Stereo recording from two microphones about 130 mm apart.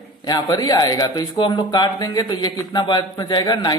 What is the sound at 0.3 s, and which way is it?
Speech, 30° left (ahead or behind).